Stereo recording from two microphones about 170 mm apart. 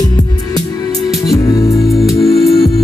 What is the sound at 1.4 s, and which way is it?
Music, 20° left (ahead or behind).